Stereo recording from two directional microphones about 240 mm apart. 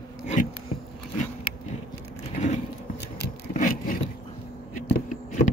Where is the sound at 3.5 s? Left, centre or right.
Left.